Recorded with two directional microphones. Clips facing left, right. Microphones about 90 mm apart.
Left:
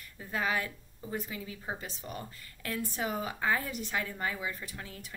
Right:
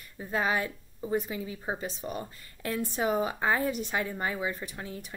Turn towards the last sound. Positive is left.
turn(degrees=-25)  # may be behind; listen again after turning